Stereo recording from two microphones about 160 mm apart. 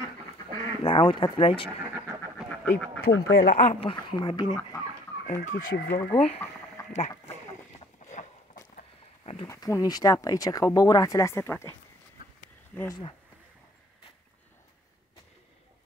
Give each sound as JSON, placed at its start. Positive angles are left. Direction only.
{"t": 0.8, "sound": "speech", "side_deg": 30}
{"t": 2.3, "sound": "duck", "side_deg": 5}
{"t": 3.0, "sound": "speech", "side_deg": 70}
{"t": 3.6, "sound": "speech", "side_deg": 35}
{"t": 5.4, "sound": "speech", "side_deg": 60}
{"t": 6.1, "sound": "speech", "side_deg": 40}
{"t": 8.0, "sound": "boat", "side_deg": 50}
{"t": 9.2, "sound": "a sound", "side_deg": 35}
{"t": 9.5, "sound": "speech", "side_deg": 20}
{"t": 12.7, "sound": "speech", "side_deg": 20}